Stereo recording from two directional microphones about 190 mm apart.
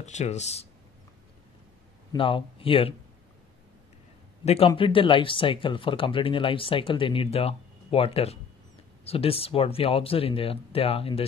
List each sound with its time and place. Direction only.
0.0 s speech: 35° left (ahead or behind)
2.1 s speech: 30° left (ahead or behind)
4.6 s speech: 25° left (ahead or behind)